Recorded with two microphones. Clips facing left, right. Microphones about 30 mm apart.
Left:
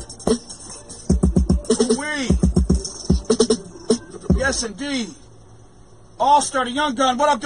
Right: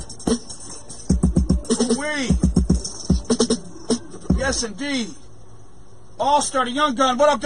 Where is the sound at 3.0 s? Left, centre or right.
Left.